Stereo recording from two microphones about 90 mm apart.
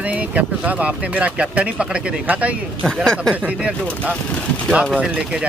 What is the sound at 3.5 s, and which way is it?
Speech, 15° right (ahead or behind).